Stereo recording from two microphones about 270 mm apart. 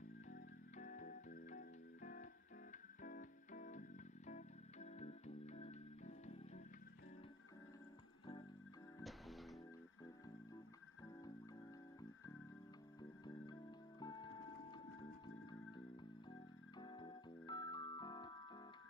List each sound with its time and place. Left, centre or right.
0.3 s music: left
9.0 s music: centre
13.2 s music: centre